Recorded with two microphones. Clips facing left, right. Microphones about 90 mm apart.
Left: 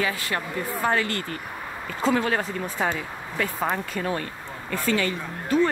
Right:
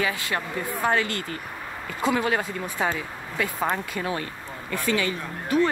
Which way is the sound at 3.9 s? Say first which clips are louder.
Left 1 dB; 15° right (ahead or behind).